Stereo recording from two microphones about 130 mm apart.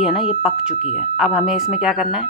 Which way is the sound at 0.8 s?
50° left (ahead or behind).